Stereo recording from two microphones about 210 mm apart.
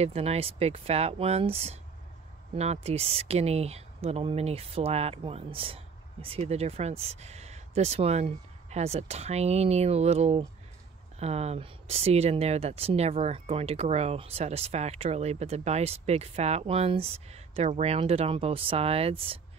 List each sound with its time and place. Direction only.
0.0 s speech: 30° right (ahead or behind)